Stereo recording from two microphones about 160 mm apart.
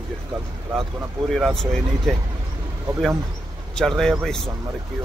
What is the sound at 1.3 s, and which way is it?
Speech, centre (ahead or behind).